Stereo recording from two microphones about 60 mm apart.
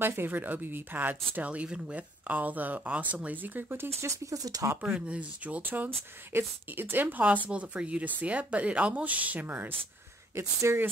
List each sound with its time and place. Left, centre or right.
0.0 s speech: right
4.3 s speech: right
4.8 s speech: centre
10.3 s speech: right